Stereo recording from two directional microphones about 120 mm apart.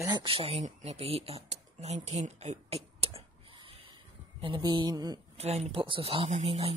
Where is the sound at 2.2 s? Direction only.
65° right (ahead or behind); by 3.8 s 50° right (ahead or behind).